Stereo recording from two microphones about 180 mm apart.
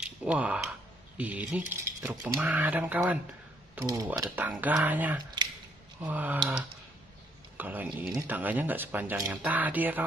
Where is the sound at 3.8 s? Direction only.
20° right (ahead or behind).